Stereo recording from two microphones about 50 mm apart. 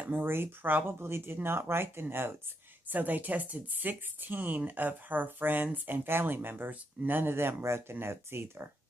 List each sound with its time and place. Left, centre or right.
0.0 s speech: right
2.9 s speech: right
6.7 s speech: right
7.2 s speech: right